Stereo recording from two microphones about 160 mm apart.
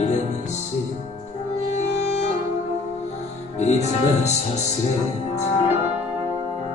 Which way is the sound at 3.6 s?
45° left (ahead or behind).